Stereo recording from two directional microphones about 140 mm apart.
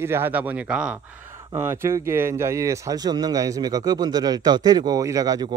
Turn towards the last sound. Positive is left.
turn(degrees=-25)  # may be behind; listen again after turning